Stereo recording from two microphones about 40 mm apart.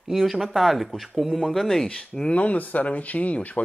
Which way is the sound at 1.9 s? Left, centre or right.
Left.